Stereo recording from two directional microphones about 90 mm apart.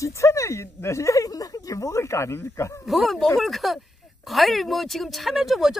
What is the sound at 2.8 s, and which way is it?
Speech, centre (ahead or behind).